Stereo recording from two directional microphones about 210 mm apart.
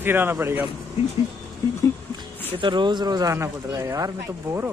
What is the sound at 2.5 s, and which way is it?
Speech, 20° right (ahead or behind).